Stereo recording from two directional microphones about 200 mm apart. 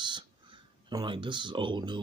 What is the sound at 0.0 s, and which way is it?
Speech, 25° right (ahead or behind).